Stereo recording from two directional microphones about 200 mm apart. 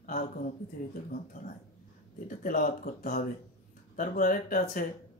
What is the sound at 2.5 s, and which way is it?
Speech, 45° left (ahead or behind).